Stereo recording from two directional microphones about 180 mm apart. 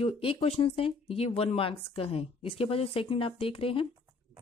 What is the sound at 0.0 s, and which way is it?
Speech, 30° left (ahead or behind).